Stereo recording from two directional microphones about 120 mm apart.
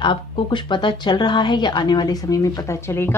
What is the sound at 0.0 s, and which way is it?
Speech, 40° left (ahead or behind).